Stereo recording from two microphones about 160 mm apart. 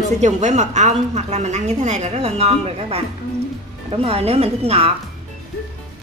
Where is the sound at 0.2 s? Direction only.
45° right (ahead or behind).